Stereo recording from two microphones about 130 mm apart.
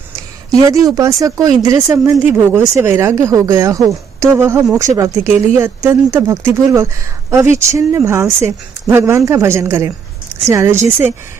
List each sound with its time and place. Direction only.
0.7 s speech: 25° right (ahead or behind)
1.9 s speech: 15° right (ahead or behind)